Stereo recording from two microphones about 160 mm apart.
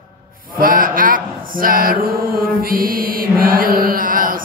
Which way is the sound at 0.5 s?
60° right (ahead or behind).